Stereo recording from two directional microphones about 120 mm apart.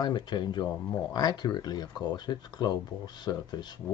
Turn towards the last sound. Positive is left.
turn(degrees=35)  # may be behind; listen again after turning